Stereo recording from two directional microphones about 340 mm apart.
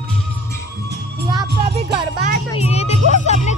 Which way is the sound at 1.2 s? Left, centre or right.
Centre.